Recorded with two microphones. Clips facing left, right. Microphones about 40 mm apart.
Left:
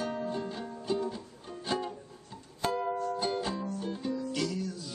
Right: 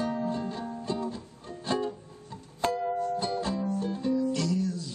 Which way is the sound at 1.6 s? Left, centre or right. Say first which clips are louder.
Right 4 dB; centre.